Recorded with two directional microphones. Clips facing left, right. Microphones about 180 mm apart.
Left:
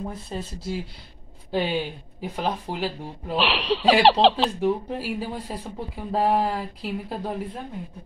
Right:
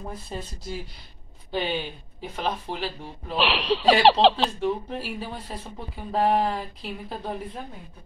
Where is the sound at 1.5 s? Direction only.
5° left (ahead or behind).